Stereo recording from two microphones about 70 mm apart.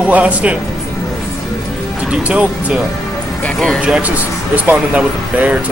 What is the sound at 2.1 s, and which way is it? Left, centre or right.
Speech, centre.